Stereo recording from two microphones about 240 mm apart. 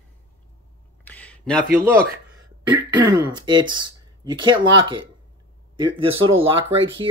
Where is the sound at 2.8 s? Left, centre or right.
Centre.